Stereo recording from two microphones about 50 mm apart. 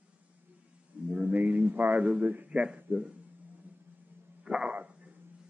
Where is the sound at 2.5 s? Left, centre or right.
Right.